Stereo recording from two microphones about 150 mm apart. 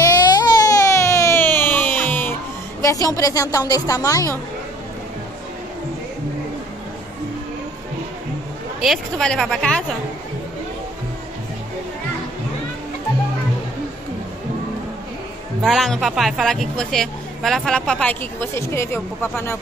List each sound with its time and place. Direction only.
0.3 s music: 25° left (ahead or behind)
2.8 s a woman's voice: 20° left (ahead or behind)
8.8 s a woman's voice: centre (ahead or behind)
15.6 s a woman's voice: centre (ahead or behind); by 19.6 s 15° left (ahead or behind)